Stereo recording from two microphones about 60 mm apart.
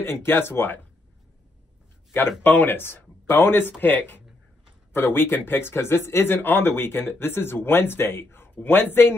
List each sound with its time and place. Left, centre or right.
0.0 s speech: left
2.4 s speech: left